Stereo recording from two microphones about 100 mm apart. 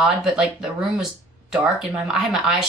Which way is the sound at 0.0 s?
5° right (ahead or behind).